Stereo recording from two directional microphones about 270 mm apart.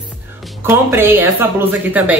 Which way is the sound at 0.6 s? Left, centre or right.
Centre.